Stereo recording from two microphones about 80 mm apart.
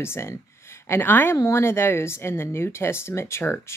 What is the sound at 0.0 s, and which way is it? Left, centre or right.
Speech, left.